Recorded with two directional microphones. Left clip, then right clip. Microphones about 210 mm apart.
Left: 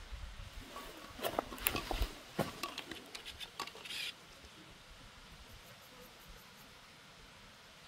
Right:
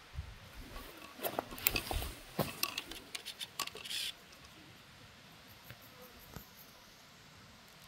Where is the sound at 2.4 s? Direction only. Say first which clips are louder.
Right 2 dB; 25° right (ahead or behind).